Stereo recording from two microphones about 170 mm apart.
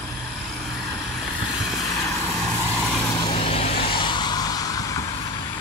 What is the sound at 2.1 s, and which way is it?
Vehicle, 15° left (ahead or behind).